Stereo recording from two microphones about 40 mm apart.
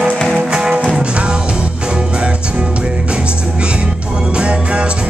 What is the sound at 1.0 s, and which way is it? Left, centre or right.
Music, right.